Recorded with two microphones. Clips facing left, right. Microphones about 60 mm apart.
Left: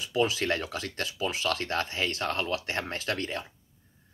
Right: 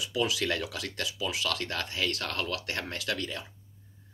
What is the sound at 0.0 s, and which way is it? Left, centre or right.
Speech, left.